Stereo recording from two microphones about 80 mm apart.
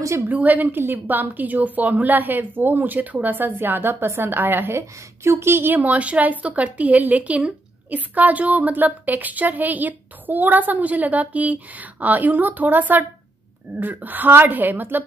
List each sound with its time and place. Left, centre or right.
0.3 s a woman's voice: centre